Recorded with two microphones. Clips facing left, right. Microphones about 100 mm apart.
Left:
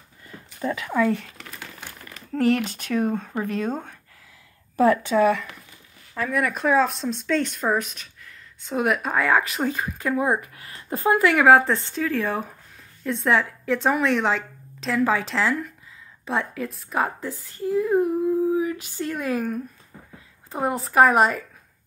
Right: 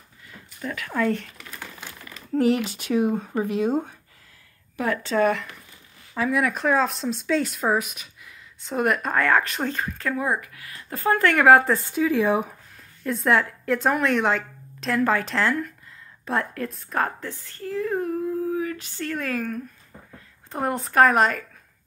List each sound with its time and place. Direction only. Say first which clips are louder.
0.6 s speech: left 5 dB; 25° left (ahead or behind)
0.9 s speech: left 1 dB; 5° left (ahead or behind)
2.3 s speech: even; 5° right (ahead or behind)
4.7 s speech: left 8 dB; 25° left (ahead or behind)
5.0 s speech: left 2 dB; 5° left (ahead or behind); by 10.5 s 20° left (ahead or behind)
10.5 s speech: left 5 dB; 30° left (ahead or behind)
11.0 s speech: left 1 dB; 5° left (ahead or behind); by 12.4 s 15° right (ahead or behind)
13.0 s speech: even; centre (ahead or behind)
20.5 s speech: left 1 dB; centre (ahead or behind)